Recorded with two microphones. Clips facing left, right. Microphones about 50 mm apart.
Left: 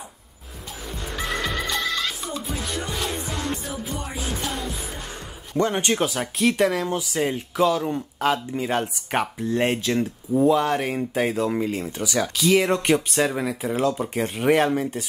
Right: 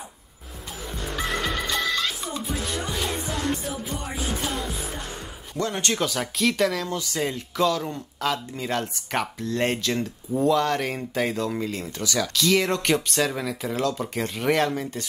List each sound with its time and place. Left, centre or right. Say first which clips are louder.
1.5 s music: even; centre
5.6 s speech: left 5 dB; left
5.9 s speech: left 2 dB; centre